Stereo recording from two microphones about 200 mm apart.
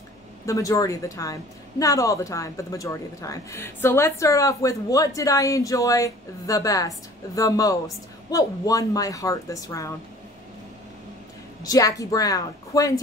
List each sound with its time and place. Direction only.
0.5 s a woman's voice: 15° left (ahead or behind)
11.6 s a woman's voice: 15° left (ahead or behind)